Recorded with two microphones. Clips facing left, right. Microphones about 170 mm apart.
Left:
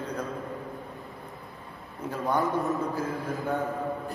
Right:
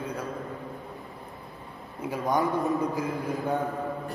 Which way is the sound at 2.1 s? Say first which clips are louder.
Right 1 dB; 10° right (ahead or behind).